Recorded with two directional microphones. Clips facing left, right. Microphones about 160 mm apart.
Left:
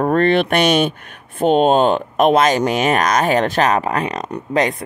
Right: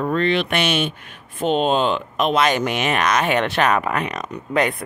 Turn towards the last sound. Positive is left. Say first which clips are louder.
# left 3 dB
turn(degrees=35)  # may be behind; listen again after turning